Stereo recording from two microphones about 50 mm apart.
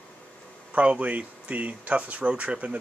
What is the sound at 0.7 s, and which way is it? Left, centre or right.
Speech, right.